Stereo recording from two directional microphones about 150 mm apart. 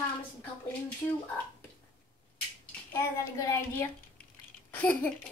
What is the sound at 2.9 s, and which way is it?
A child's voice, 20° left (ahead or behind).